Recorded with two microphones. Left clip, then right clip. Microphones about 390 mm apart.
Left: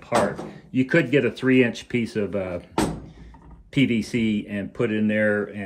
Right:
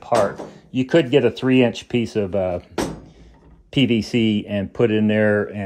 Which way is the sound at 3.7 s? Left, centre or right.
Centre.